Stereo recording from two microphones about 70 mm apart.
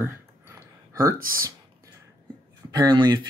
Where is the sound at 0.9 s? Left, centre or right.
Right.